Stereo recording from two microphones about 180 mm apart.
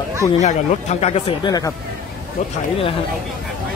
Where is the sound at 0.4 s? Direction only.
40° left (ahead or behind); by 1.7 s 25° left (ahead or behind).